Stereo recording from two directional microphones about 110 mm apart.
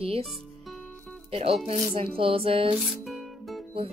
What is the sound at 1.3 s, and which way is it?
Speech, 65° right (ahead or behind).